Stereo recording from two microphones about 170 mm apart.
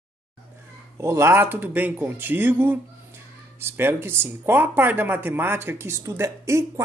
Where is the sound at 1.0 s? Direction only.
15° right (ahead or behind).